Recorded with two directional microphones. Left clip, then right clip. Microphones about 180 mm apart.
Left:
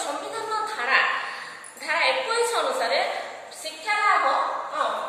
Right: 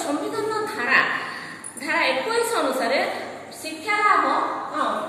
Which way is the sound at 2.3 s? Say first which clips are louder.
Right 1 dB; 15° right (ahead or behind).